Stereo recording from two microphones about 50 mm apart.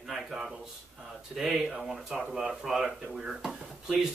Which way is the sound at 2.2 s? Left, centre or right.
Centre.